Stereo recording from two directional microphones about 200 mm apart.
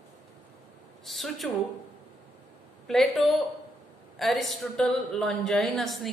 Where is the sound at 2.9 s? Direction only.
Centre (ahead or behind).